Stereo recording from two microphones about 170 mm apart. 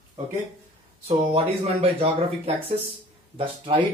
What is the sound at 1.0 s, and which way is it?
Speech, 35° right (ahead or behind).